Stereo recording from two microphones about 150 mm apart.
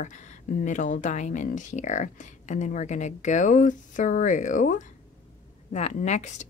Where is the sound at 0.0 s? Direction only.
55° left (ahead or behind).